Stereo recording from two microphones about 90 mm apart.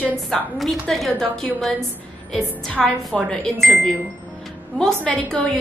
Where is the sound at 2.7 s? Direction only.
10° left (ahead or behind).